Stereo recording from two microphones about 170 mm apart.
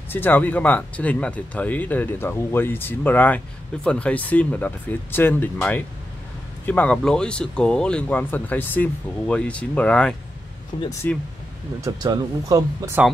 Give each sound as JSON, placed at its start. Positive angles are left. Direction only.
{"t": 0.1, "sound": "speech", "side_deg": 10}
{"t": 11.8, "sound": "speech", "side_deg": -20}